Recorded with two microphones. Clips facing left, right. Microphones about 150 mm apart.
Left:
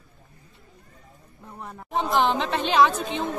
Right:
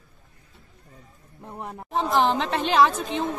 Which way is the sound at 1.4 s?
25° right (ahead or behind).